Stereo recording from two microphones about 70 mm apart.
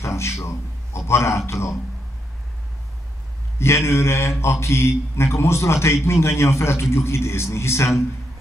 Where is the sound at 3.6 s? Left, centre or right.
Left.